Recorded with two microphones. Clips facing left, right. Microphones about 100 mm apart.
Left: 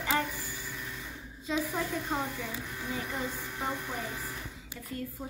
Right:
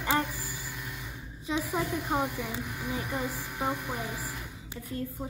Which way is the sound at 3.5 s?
15° right (ahead or behind).